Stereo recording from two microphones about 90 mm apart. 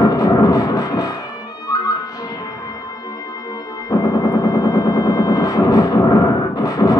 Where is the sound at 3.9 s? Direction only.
40° left (ahead or behind).